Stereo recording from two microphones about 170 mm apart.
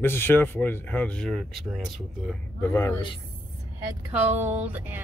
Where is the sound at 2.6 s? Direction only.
15° left (ahead or behind).